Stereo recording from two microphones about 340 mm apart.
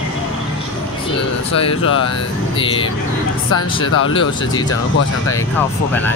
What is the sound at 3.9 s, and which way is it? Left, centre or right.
Speech, left.